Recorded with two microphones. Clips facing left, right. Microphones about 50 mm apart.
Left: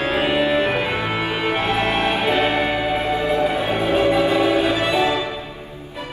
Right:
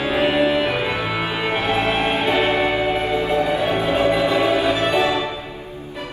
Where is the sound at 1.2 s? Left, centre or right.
Right.